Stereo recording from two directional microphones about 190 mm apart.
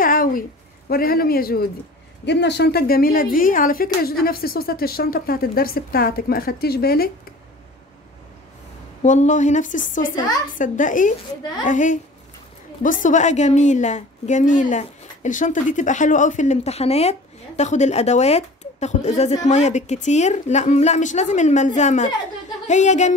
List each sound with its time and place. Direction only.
0.0 s a sound: 45° left (ahead or behind)
2.2 s a woman's voice: 65° left (ahead or behind)
9.0 s a woman's voice: 40° left (ahead or behind)
13.0 s a woman's voice: 40° left (ahead or behind)